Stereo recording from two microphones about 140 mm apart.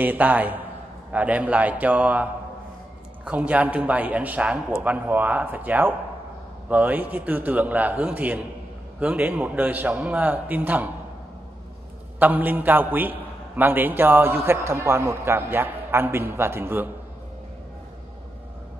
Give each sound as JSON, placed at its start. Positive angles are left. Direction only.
{"t": 0.0, "sound": "a man's voice", "side_deg": -10}
{"t": 3.3, "sound": "a man's voice", "side_deg": -10}
{"t": 12.2, "sound": "a man's voice", "side_deg": -10}